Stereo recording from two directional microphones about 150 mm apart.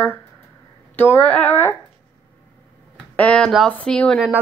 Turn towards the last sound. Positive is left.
turn(degrees=5)  # may be behind; listen again after turning